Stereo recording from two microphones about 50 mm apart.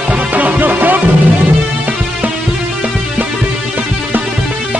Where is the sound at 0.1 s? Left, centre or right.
Right.